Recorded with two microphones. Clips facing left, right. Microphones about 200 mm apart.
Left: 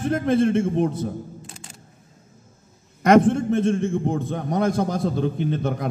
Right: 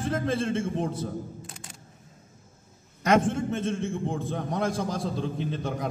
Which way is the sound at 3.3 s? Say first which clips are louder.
Left 8 dB; 65° left (ahead or behind).